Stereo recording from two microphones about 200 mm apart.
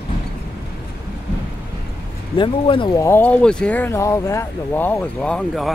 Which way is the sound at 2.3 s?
25° left (ahead or behind).